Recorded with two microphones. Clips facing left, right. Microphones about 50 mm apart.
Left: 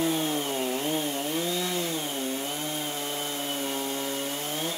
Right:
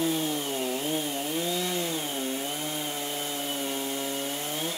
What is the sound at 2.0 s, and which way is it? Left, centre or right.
Chainsaw, centre.